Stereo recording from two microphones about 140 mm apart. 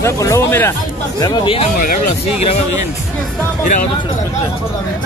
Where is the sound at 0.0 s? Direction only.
20° left (ahead or behind).